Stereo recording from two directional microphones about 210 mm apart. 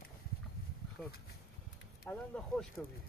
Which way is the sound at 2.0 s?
5° left (ahead or behind).